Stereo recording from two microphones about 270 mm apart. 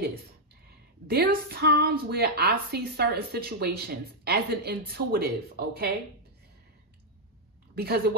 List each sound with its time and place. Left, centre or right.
1.0 s a woman's voice: right
7.7 s a woman's voice: right